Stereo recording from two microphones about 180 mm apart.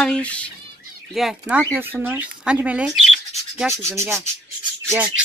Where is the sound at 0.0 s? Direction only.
5° left (ahead or behind).